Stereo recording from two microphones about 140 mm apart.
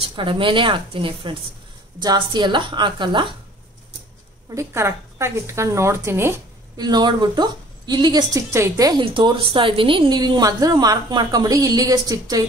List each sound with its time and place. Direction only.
0.0 s a woman's voice: 35° right (ahead or behind)
4.6 s a woman's voice: 20° right (ahead or behind)
6.8 s a woman's voice: 30° right (ahead or behind)
9.0 s a woman's voice: 35° right (ahead or behind)